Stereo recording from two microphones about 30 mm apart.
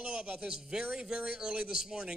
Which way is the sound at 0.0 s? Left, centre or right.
Right.